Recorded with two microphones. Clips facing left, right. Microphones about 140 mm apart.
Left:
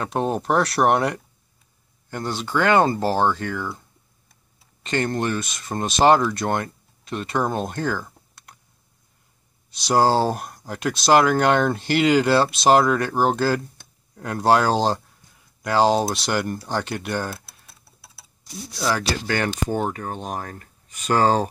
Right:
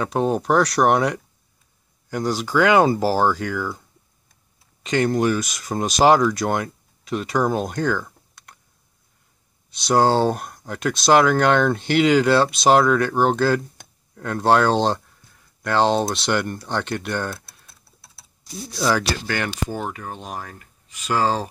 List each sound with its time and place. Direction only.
0.0 s speech: centre (ahead or behind)
4.8 s speech: centre (ahead or behind)
9.8 s speech: centre (ahead or behind)
19.2 s speech: 25° left (ahead or behind)
19.8 s speech: 40° left (ahead or behind)